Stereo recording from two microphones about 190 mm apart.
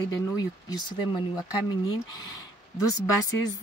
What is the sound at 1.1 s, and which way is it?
Speech, 20° left (ahead or behind).